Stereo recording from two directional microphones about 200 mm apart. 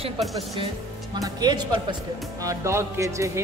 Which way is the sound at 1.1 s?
20° right (ahead or behind).